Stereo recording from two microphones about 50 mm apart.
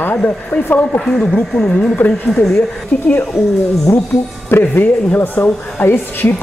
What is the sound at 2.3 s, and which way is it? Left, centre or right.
Speech, centre.